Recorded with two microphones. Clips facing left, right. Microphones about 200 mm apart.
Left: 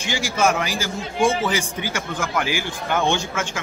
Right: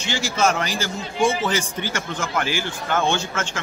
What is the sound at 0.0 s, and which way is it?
A man's voice, 10° left (ahead or behind).